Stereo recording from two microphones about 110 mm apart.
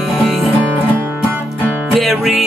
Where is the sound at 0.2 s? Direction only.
Centre (ahead or behind).